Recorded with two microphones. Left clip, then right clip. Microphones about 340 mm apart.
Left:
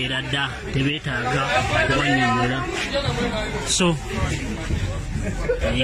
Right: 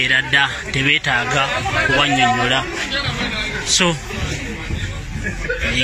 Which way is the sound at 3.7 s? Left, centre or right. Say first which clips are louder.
Right 5 dB; centre.